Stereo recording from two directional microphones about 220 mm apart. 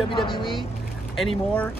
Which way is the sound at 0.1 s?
20° left (ahead or behind).